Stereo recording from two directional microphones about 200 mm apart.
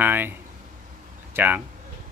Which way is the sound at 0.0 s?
10° right (ahead or behind).